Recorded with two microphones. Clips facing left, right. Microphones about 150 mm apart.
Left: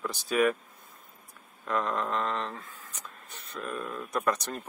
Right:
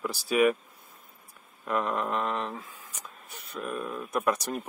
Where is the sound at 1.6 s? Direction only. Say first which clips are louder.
Right 1 dB; 10° right (ahead or behind).